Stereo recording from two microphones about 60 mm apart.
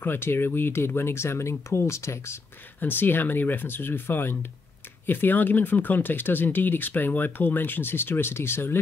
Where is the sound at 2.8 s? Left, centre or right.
Left.